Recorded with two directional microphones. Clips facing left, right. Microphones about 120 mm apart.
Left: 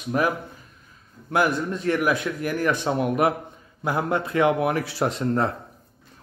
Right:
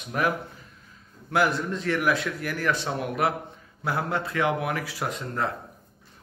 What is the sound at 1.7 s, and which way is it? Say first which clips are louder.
Speech: left 2 dB; 20° left (ahead or behind).